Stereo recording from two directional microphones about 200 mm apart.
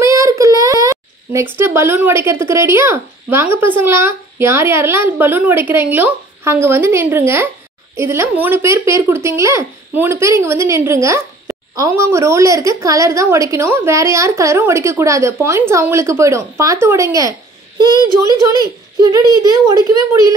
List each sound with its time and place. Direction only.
0.0 s a child's voice: 15° right (ahead or behind)